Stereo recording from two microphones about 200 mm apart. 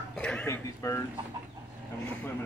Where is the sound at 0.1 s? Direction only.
5° left (ahead or behind).